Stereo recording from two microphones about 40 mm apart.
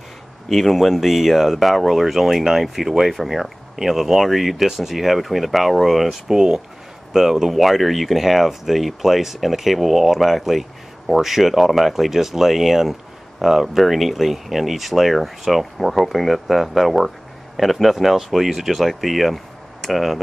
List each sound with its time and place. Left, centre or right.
0.5 s speech: centre
6.0 s speech: centre